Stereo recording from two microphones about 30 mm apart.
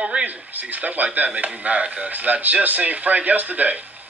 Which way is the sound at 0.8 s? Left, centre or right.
Right.